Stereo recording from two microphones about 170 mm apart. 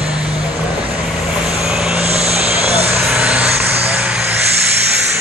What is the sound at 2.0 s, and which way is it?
Vehicle, 40° right (ahead or behind).